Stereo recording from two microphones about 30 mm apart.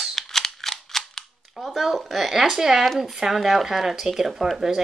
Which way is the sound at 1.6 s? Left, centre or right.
Centre.